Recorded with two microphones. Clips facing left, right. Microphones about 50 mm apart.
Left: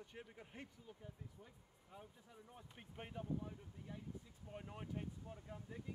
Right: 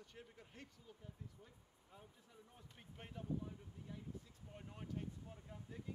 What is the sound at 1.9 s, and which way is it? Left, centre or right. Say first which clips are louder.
Speech: left 3 dB; centre.